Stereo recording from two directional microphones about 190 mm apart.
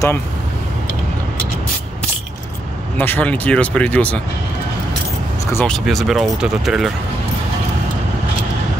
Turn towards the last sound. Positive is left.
turn(degrees=0)  # may be behind; listen again after turning